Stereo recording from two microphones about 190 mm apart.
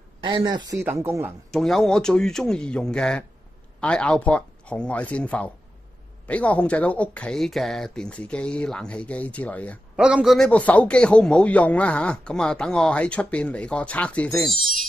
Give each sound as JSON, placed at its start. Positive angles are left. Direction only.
{"t": 0.2, "sound": "speech", "side_deg": -25}
{"t": 1.5, "sound": "a man's voice", "side_deg": 0}
{"t": 9.9, "sound": "a man's voice", "side_deg": -5}